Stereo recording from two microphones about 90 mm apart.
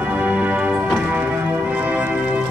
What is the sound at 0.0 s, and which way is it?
Music, 15° right (ahead or behind).